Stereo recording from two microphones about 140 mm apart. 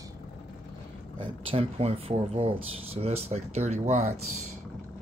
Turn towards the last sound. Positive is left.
turn(degrees=-60)  # may be behind; listen again after turning